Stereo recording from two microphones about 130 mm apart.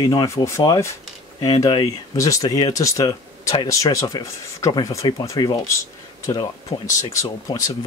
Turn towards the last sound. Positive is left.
turn(degrees=25)  # may be behind; listen again after turning